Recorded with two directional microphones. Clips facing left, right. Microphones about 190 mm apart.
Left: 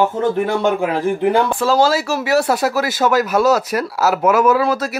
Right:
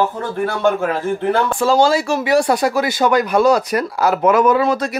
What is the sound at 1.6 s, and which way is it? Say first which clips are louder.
Speech: right 1 dB; centre (ahead or behind).